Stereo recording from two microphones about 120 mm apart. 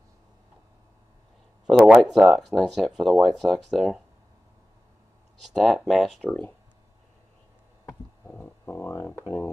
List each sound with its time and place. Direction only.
1.7 s speech: 5° right (ahead or behind)
5.4 s speech: centre (ahead or behind)
8.3 s a sound: 15° left (ahead or behind)